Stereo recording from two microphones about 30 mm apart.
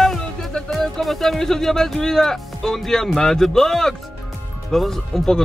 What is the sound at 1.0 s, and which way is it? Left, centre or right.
Speech, centre.